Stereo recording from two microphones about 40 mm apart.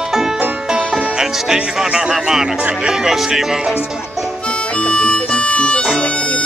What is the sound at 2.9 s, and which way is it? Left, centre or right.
Speech, centre.